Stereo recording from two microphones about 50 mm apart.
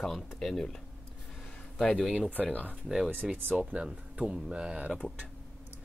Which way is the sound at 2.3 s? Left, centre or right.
Left.